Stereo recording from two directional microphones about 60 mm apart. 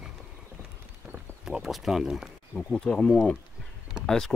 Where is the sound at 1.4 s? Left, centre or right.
Centre.